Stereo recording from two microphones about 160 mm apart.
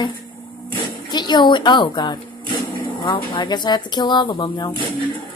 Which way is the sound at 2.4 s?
30° right (ahead or behind).